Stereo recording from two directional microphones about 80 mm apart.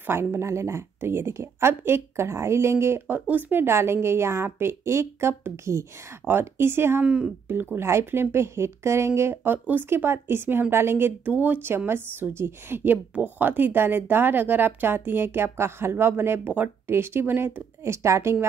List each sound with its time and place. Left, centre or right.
0.0 s a woman's voice: right
3.1 s a woman's voice: right
7.0 s speech: centre
7.4 s speech: right
17.8 s a woman's voice: right